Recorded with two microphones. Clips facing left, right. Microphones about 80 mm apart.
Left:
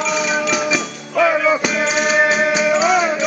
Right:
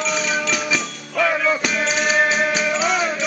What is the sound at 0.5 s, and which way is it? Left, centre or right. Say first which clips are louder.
Music: left 4 dB; centre.